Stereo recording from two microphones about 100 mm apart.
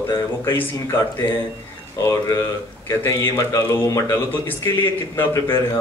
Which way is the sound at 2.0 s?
30° left (ahead or behind).